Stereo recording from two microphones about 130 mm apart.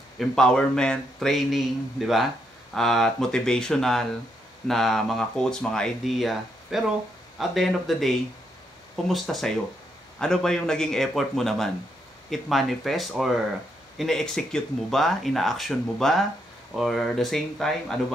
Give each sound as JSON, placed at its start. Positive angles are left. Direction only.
{"t": 0.2, "sound": "speech", "side_deg": 5}
{"t": 9.1, "sound": "speech", "side_deg": 0}